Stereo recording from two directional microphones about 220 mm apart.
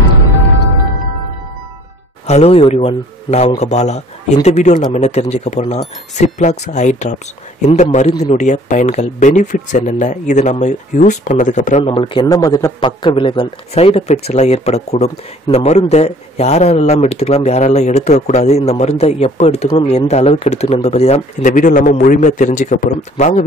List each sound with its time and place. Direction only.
2.2 s speech: 30° left (ahead or behind)